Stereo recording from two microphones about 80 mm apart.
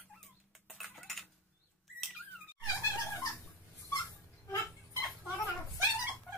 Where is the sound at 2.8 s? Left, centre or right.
Left.